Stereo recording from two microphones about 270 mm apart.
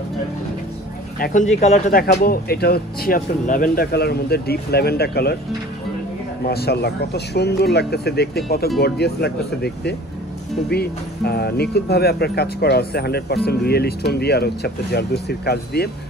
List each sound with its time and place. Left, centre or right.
1.2 s speech: left
6.4 s speech: left